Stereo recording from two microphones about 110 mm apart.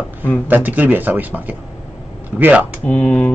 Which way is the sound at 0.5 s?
15° right (ahead or behind).